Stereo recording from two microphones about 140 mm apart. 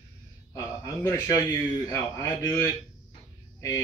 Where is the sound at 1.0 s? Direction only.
20° left (ahead or behind).